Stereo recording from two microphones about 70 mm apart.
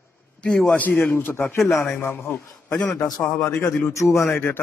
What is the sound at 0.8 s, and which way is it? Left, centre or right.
Speech, left.